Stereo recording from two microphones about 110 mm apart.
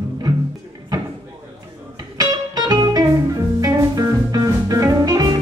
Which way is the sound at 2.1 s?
35° right (ahead or behind).